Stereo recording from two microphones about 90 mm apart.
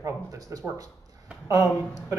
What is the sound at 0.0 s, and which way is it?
Speech, 35° right (ahead or behind).